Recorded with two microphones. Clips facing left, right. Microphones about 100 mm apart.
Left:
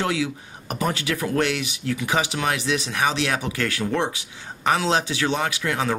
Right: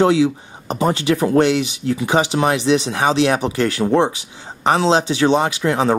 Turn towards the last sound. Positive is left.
turn(degrees=-30)  # may be behind; listen again after turning